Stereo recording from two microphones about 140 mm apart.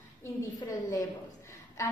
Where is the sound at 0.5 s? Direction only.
25° left (ahead or behind).